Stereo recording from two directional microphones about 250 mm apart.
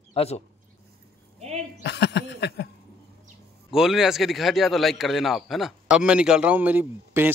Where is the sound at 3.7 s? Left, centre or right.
Centre.